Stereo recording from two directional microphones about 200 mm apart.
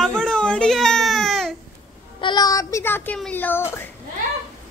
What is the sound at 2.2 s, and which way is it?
Child singing, 20° left (ahead or behind).